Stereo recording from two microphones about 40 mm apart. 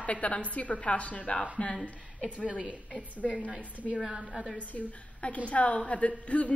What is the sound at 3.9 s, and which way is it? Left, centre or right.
Speech, centre.